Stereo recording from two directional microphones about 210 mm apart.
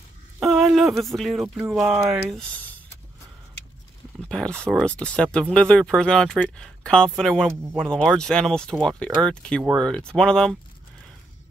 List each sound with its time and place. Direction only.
0.4 s speech: centre (ahead or behind)
4.3 s speech: 5° left (ahead or behind)